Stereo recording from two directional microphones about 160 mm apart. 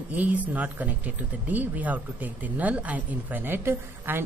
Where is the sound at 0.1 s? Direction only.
10° right (ahead or behind).